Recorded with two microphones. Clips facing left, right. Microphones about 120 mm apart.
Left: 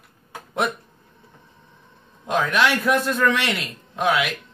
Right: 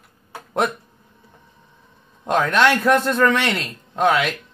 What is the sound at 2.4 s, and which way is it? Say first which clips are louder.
Speech: right 4 dB; centre (ahead or behind).